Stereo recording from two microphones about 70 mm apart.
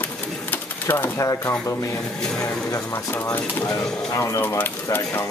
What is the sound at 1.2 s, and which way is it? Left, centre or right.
Speech, left.